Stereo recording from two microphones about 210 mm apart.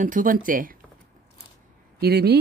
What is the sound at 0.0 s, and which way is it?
Speech, 40° right (ahead or behind).